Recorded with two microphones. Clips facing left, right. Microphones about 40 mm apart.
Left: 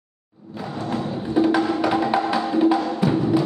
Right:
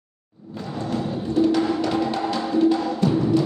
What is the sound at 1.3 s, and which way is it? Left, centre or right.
Music, centre.